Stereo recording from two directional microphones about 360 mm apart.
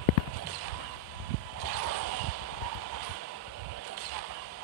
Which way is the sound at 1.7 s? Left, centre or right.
Right.